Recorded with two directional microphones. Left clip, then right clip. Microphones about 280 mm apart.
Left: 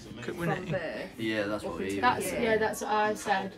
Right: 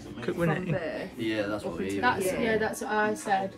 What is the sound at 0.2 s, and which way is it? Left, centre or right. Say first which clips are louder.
Speech: right 4 dB; centre.